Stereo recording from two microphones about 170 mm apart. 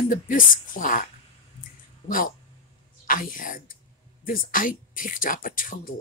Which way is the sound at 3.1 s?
55° left (ahead or behind).